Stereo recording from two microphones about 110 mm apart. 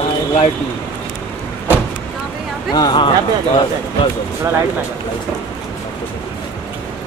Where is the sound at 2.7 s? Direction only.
40° left (ahead or behind).